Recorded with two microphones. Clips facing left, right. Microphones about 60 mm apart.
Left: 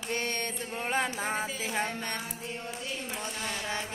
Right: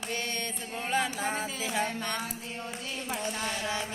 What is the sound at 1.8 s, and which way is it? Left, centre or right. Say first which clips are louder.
Mantra: right 2 dB; left.